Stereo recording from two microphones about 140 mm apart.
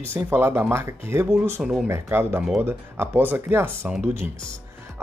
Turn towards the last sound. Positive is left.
turn(degrees=-15)  # may be behind; listen again after turning